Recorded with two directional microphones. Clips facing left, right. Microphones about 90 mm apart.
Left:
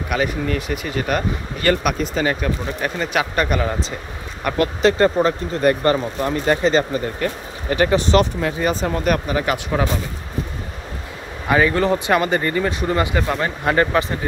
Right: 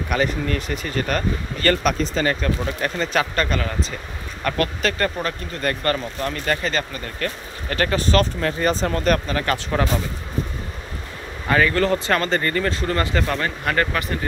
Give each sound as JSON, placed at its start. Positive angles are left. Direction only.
{"t": 0.1, "sound": "speech", "side_deg": 5}
{"t": 11.4, "sound": "speech", "side_deg": 15}